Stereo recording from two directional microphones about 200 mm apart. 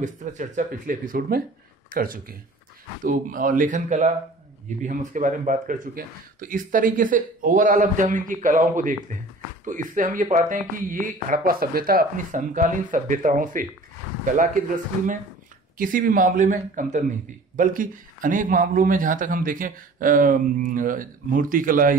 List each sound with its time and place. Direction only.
0.0 s speech: 40° right (ahead or behind)
15.8 s speech: 45° right (ahead or behind)